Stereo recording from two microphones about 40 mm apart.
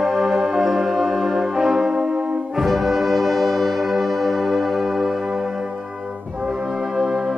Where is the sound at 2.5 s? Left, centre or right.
Centre.